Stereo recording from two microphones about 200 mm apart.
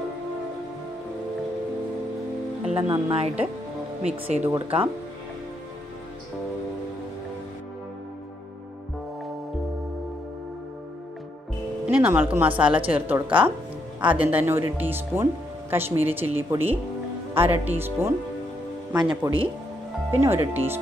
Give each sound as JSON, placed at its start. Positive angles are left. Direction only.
{"t": 2.7, "sound": "speech", "side_deg": -25}
{"t": 4.4, "sound": "speech", "side_deg": -15}
{"t": 11.8, "sound": "speech", "side_deg": -10}